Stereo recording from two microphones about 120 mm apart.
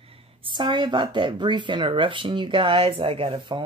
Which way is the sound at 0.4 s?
40° right (ahead or behind).